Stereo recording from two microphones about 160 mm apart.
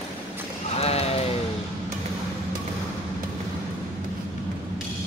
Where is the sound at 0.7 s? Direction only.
40° left (ahead or behind).